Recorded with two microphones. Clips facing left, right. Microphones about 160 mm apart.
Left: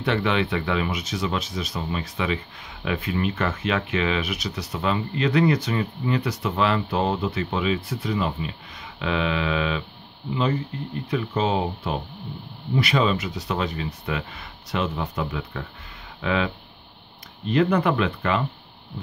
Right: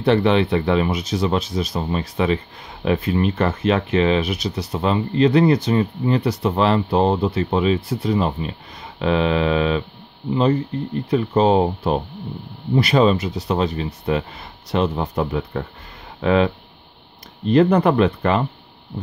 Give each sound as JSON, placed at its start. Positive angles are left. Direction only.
{"t": 0.0, "sound": "speech", "side_deg": -35}
{"t": 11.1, "sound": "speech", "side_deg": -40}
{"t": 17.5, "sound": "speech", "side_deg": -40}